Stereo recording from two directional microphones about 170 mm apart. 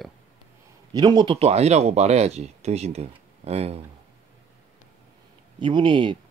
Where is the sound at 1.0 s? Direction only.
25° right (ahead or behind).